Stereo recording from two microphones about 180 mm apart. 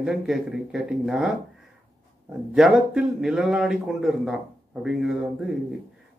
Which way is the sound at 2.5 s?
5° right (ahead or behind).